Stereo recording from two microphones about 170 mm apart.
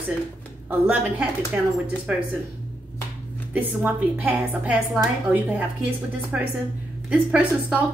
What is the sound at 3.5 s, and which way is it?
Speech, 10° right (ahead or behind).